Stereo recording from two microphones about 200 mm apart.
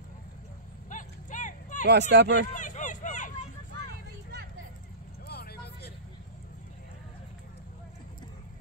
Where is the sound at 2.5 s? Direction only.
40° left (ahead or behind).